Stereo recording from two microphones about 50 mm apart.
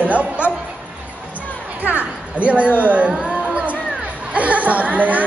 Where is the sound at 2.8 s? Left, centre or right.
Right.